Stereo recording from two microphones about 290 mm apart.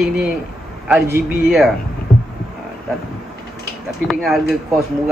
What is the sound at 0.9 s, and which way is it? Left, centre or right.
Speech, centre.